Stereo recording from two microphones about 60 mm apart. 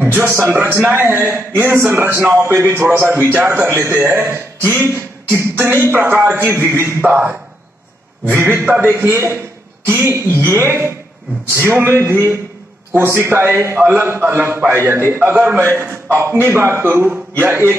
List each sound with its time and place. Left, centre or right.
0.1 s a man's voice: right